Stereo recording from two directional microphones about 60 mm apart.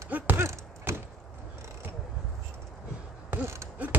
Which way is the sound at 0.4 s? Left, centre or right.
Right.